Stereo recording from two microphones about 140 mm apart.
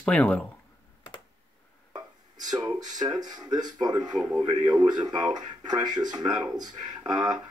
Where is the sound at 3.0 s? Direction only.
30° right (ahead or behind).